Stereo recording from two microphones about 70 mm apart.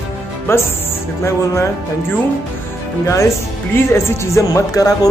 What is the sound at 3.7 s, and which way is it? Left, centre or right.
Speech, left.